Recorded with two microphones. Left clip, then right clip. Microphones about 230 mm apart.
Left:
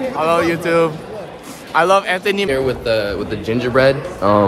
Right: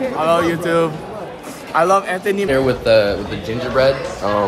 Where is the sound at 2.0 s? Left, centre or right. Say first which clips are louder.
Left 1 dB; centre.